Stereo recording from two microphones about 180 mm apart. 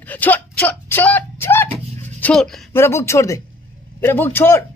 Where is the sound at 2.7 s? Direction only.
15° left (ahead or behind).